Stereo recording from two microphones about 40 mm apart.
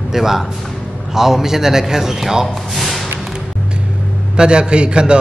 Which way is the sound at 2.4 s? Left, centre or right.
Centre.